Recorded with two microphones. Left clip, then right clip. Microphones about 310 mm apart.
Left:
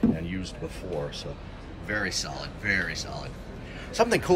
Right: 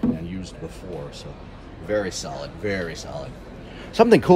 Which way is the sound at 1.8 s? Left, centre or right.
Centre.